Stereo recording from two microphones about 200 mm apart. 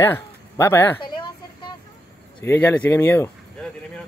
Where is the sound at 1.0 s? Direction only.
25° left (ahead or behind).